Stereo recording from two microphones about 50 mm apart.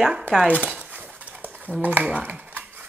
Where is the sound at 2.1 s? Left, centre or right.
Right.